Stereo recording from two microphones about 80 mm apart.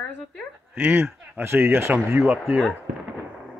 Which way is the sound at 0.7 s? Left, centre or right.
Right.